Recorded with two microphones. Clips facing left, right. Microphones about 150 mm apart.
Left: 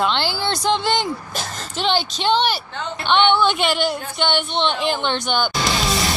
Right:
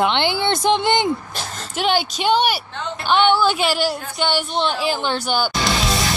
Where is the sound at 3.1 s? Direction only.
5° right (ahead or behind).